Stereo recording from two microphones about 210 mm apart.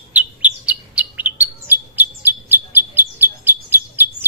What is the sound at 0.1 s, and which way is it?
Bird, 5° right (ahead or behind).